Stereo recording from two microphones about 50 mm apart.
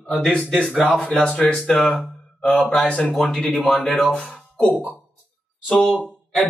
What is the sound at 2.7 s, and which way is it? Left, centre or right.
Speech, left.